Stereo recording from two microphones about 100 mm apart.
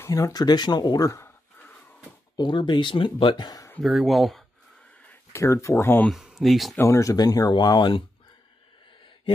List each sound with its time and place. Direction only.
0.0 s speech: 35° left (ahead or behind)
2.3 s speech: 50° left (ahead or behind)
3.8 s speech: centre (ahead or behind)
5.3 s speech: 30° left (ahead or behind)
6.0 s speech: 5° right (ahead or behind)
6.8 s speech: 30° left (ahead or behind); by 8.0 s 50° left (ahead or behind)